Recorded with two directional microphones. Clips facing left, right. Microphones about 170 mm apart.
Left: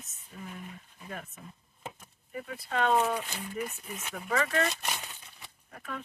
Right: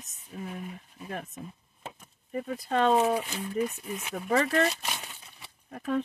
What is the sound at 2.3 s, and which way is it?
Speech, 35° right (ahead or behind).